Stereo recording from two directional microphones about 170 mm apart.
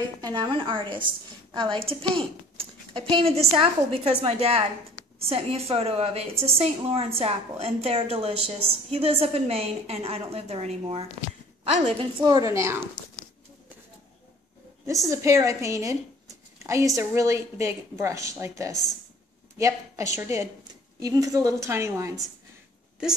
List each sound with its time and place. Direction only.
0.2 s a woman's voice: 25° right (ahead or behind); by 12.1 s 40° right (ahead or behind)
12.2 s a woman's voice: 20° right (ahead or behind)
14.9 s speech: 20° right (ahead or behind)
18.7 s speech: 20° left (ahead or behind)
19.6 s a woman's voice: 15° right (ahead or behind)